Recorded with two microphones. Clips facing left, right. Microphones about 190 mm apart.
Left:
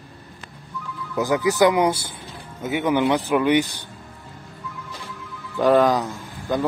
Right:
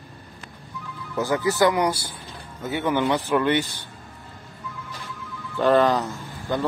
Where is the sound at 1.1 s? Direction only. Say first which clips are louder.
Left 2 dB; 15° left (ahead or behind).